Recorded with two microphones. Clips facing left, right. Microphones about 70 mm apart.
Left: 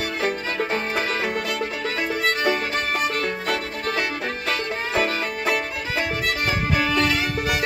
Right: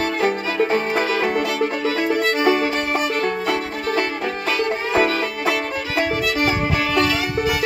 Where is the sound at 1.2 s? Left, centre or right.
Right.